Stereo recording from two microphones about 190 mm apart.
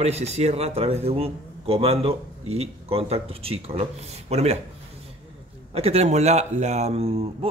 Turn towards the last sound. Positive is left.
turn(degrees=-35)  # may be behind; listen again after turning